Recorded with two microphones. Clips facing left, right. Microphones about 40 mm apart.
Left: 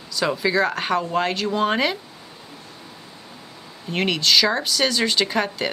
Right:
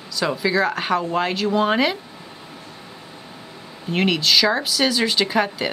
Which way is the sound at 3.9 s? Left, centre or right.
Centre.